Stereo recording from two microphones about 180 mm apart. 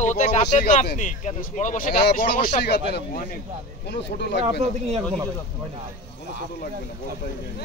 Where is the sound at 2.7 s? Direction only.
70° left (ahead or behind).